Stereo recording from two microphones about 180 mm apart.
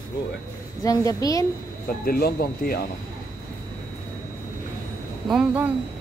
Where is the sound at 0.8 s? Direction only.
20° left (ahead or behind).